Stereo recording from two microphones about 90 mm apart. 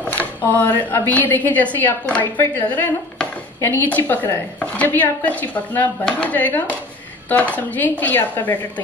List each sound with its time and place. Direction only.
0.0 s a woman's voice: 15° left (ahead or behind)
4.6 s chopping: 15° left (ahead or behind)
6.0 s speech: 15° left (ahead or behind)
7.5 s chopping: 20° left (ahead or behind)